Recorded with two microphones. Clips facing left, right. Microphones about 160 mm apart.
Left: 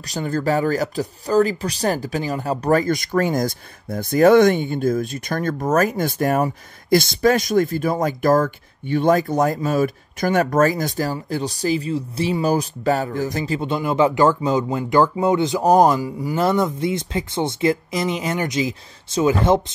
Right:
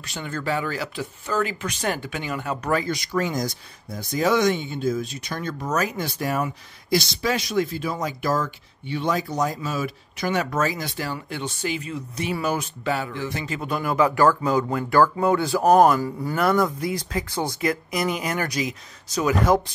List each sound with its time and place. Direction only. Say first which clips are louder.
0.0 s speech: left 7 dB; 40° left (ahead or behind)
13.6 s speech: left 3 dB; 25° left (ahead or behind)
16.3 s speech: left 2 dB; 25° left (ahead or behind)